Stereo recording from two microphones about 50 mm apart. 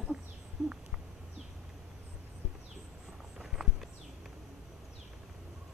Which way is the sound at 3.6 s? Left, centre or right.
Centre.